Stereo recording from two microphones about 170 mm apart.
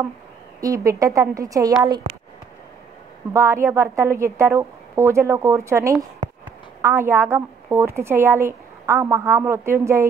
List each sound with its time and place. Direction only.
0.6 s a woman's voice: 20° right (ahead or behind)
3.3 s a woman's voice: 15° right (ahead or behind)